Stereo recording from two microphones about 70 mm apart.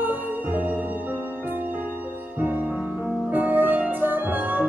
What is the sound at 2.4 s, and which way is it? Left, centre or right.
Music, right.